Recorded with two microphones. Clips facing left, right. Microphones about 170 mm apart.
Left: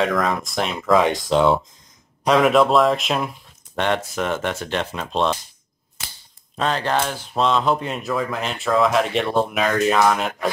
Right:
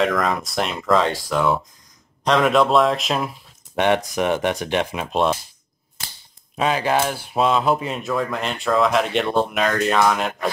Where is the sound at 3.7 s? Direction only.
15° right (ahead or behind).